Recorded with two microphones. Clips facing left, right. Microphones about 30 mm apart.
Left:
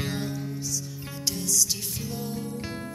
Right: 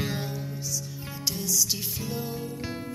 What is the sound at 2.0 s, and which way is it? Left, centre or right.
Music, centre.